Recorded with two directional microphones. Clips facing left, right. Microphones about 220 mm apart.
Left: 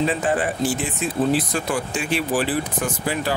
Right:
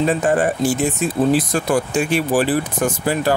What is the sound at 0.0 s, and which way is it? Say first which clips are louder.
Speech: right 4 dB; 45° right (ahead or behind).